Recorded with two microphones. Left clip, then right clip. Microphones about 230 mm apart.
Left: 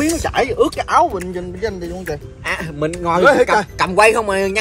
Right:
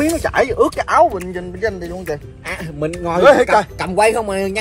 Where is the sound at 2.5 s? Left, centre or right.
Centre.